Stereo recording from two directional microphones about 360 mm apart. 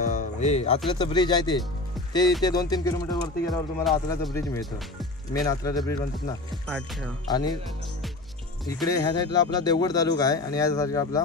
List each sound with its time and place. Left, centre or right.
0.0 s music: left
1.0 s speech: centre
8.6 s speech: centre